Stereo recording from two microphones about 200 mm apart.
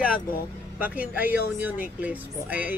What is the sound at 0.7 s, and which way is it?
Speech, 5° right (ahead or behind).